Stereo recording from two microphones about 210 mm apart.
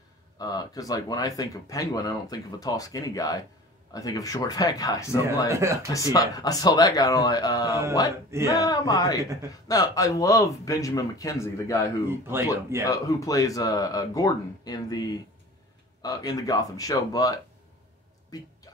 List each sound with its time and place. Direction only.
0.4 s speech: 20° left (ahead or behind)
5.5 s speech: 15° right (ahead or behind)
5.9 s speech: 15° left (ahead or behind)
12.1 s speech: 10° right (ahead or behind)
12.8 s speech: 15° left (ahead or behind)